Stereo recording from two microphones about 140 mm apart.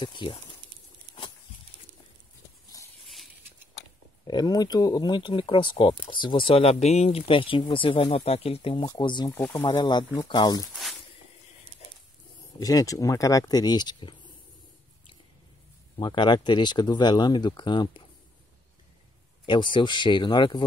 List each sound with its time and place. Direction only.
0.0 s speech: 35° left (ahead or behind)
4.3 s speech: 30° left (ahead or behind)
8.8 s speech: 30° left (ahead or behind)
9.3 s speech: 15° left (ahead or behind)
9.6 s speech: 30° left (ahead or behind)
10.7 s a sound: centre (ahead or behind)
12.5 s speech: 25° left (ahead or behind)
16.0 s speech: 30° left (ahead or behind)
19.4 s speech: 35° left (ahead or behind)